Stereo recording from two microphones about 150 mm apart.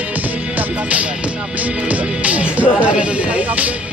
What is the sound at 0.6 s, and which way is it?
Music, 10° right (ahead or behind).